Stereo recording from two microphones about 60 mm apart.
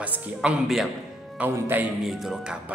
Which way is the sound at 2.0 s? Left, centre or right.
Centre.